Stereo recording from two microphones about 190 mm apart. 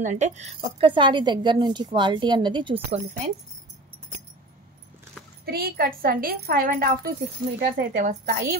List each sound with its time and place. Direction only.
0.0 s a woman's voice: 40° right (ahead or behind)
5.4 s a woman's voice: 55° right (ahead or behind)